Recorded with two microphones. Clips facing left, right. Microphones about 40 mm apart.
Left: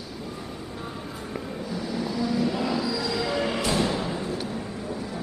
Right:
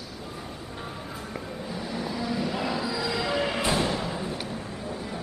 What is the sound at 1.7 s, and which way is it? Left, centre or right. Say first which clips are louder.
Vehicle: left 2 dB; centre.